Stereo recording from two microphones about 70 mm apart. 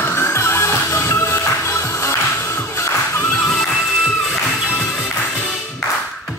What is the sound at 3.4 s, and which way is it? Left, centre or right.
Music, centre.